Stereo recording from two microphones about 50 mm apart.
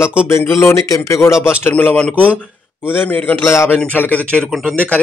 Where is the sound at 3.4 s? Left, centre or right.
Left.